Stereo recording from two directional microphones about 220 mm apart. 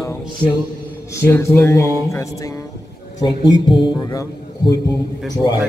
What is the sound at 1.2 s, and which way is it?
A man's voice, 10° left (ahead or behind).